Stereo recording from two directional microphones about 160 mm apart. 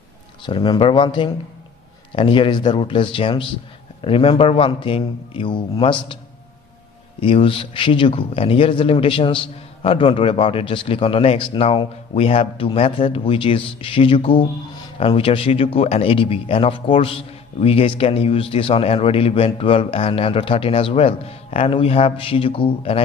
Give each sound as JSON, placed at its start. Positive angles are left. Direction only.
{"t": 0.4, "sound": "a man's voice", "side_deg": 30}
{"t": 7.2, "sound": "a man's voice", "side_deg": 35}